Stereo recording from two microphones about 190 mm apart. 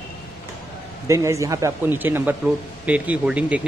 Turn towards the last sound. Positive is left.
turn(degrees=-5)  # may be behind; listen again after turning